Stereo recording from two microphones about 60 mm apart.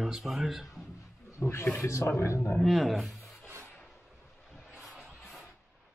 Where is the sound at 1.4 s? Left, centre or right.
Left.